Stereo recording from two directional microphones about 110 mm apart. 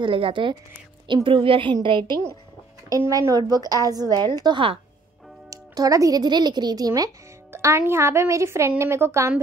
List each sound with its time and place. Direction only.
0.0 s a woman's voice: 50° right (ahead or behind)
3.1 s a woman's voice: 30° right (ahead or behind)
7.5 s a woman's voice: 25° right (ahead or behind)